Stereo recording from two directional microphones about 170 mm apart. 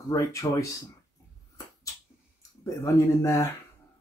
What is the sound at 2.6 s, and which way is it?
Speech, 20° left (ahead or behind).